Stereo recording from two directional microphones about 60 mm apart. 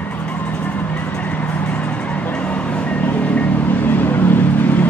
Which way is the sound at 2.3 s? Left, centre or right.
Left.